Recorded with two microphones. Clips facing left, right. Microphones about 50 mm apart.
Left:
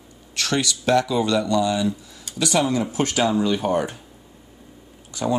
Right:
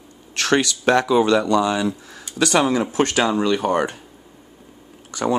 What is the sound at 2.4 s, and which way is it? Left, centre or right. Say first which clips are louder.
Speech: right 3 dB; right.